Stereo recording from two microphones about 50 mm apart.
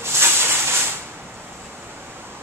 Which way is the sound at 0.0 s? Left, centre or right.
Right.